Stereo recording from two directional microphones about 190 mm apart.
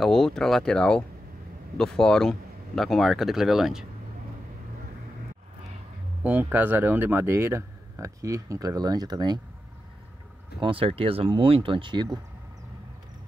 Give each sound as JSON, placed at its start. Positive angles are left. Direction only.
{"t": 0.0, "sound": "speech", "side_deg": 0}
{"t": 6.2, "sound": "speech", "side_deg": -10}
{"t": 10.6, "sound": "speech", "side_deg": -30}